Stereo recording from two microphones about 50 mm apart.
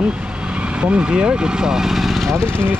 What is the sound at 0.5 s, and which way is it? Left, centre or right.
Speech, right.